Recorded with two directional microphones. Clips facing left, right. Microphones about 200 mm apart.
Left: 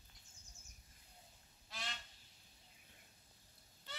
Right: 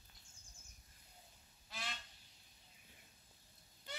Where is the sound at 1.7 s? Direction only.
Centre (ahead or behind).